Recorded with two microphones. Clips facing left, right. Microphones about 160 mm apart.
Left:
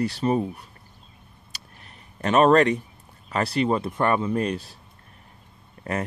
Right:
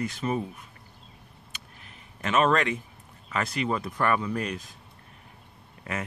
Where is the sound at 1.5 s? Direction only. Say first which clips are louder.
Even; 35° left (ahead or behind).